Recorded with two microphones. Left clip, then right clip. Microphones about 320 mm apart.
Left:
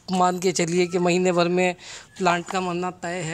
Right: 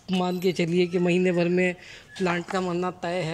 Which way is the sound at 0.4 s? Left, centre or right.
Centre.